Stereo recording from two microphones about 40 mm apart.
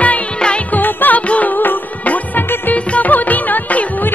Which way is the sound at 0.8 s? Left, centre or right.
Left.